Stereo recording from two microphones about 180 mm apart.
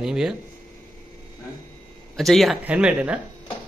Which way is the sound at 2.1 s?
Centre (ahead or behind).